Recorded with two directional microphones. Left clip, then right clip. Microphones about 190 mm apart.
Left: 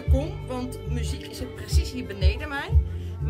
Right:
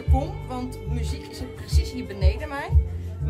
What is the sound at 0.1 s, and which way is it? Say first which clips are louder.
Speech: right 1 dB; 5° right (ahead or behind).